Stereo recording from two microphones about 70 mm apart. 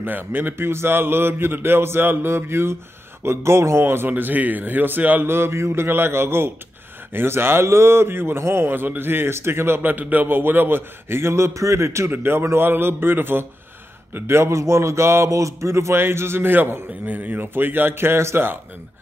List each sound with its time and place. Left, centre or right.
0.0 s a man's voice: right
12.1 s a man's voice: right